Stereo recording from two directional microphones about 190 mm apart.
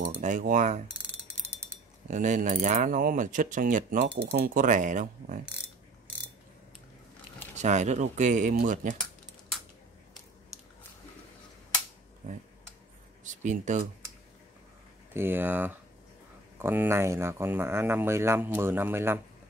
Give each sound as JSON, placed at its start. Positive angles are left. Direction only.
{"t": 0.0, "sound": "speech", "side_deg": -45}
{"t": 2.0, "sound": "speech", "side_deg": -40}
{"t": 7.5, "sound": "speech", "side_deg": -40}
{"t": 13.2, "sound": "speech", "side_deg": -40}
{"t": 15.1, "sound": "speech", "side_deg": -10}